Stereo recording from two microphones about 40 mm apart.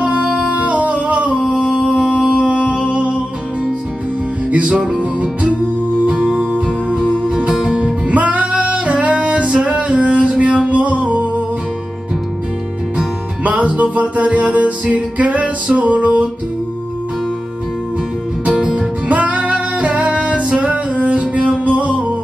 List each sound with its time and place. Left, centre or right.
0.0 s music: right
1.0 s a sound: right
1.9 s a sound: right
2.4 s music: right
4.5 s music: right
13.4 s music: right
18.5 s music: centre
18.8 s music: right